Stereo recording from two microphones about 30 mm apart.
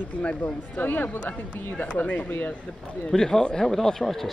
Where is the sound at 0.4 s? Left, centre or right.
Left.